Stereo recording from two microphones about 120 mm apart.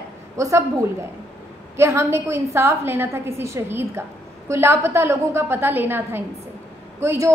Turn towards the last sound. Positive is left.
turn(degrees=-20)  # may be behind; listen again after turning